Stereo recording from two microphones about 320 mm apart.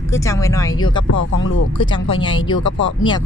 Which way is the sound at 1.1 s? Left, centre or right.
Left.